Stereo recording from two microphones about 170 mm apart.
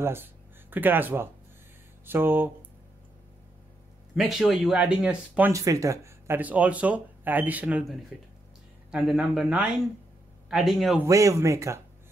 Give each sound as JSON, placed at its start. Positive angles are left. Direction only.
{"t": 0.0, "sound": "speech", "side_deg": -10}
{"t": 4.1, "sound": "speech", "side_deg": 0}
{"t": 5.5, "sound": "speech", "side_deg": -20}
{"t": 11.0, "sound": "speech", "side_deg": -20}